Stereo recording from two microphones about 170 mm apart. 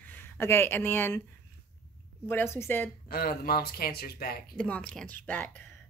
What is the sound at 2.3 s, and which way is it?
Speech, 15° left (ahead or behind).